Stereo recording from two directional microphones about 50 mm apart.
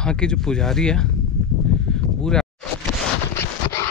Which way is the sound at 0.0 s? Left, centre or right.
Centre.